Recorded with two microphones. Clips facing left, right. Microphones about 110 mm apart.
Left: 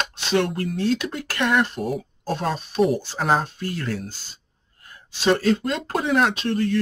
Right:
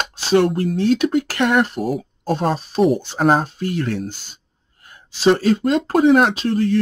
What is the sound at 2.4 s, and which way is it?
Speech, 35° right (ahead or behind).